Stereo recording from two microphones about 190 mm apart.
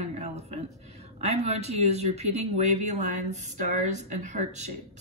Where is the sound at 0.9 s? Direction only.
35° right (ahead or behind).